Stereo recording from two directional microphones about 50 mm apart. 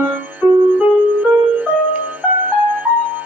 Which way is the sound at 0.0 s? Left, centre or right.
Right.